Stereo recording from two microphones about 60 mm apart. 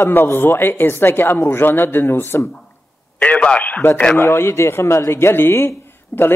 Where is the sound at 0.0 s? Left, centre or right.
Left.